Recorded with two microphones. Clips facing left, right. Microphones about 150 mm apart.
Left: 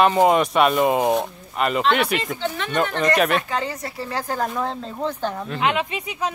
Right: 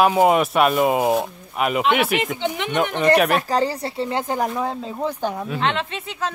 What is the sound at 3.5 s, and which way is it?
Speech, 35° right (ahead or behind).